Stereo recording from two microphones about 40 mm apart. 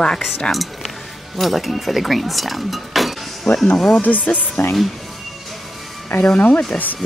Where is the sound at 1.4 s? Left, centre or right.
Centre.